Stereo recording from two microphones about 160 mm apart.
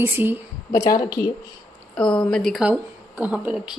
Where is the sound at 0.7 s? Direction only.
25° left (ahead or behind).